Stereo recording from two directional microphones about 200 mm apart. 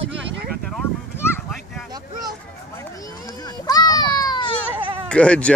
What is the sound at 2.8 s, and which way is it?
Children playing, 15° left (ahead or behind).